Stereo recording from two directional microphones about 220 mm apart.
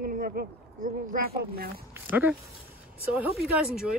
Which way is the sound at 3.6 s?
5° right (ahead or behind).